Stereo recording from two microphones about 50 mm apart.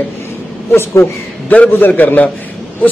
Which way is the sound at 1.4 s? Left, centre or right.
Left.